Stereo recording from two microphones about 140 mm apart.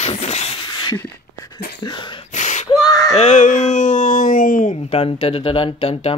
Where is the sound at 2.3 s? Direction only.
60° left (ahead or behind).